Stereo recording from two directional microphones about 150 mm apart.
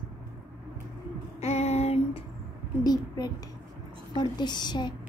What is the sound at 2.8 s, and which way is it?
A child's voice, 25° left (ahead or behind).